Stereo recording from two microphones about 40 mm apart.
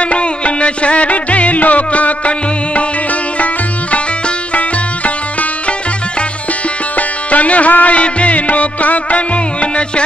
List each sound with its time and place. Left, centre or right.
0.0 s music: left
7.0 s music: left